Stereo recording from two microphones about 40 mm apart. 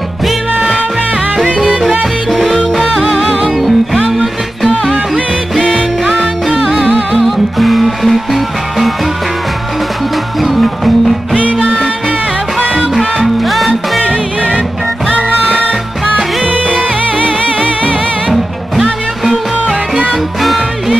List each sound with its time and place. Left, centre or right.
3.0 s music: centre
3.5 s music: centre
4.9 s music: right
7.2 s music: centre
10.4 s music: centre
12.9 s music: centre
14.0 s music: right
18.3 s music: centre